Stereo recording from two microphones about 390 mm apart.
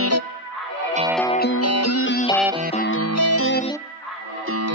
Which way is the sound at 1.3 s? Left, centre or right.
Left.